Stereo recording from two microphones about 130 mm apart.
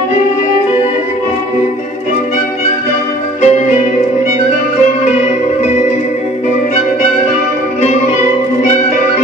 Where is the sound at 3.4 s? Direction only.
60° left (ahead or behind).